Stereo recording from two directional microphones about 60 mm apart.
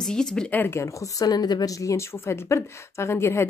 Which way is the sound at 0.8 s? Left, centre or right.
Left.